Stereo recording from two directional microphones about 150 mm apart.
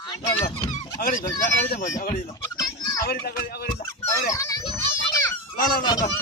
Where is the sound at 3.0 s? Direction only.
90° left.